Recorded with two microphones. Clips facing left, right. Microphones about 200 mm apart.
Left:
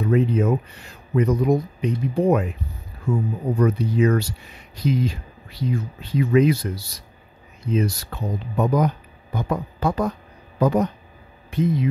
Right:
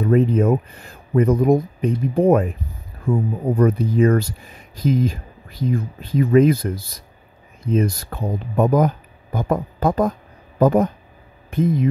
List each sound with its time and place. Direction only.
0.0 s speech: 50° right (ahead or behind)